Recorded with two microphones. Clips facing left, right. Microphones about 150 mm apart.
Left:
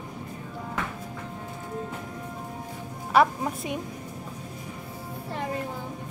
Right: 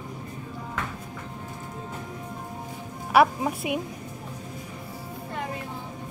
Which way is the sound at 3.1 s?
10° right (ahead or behind).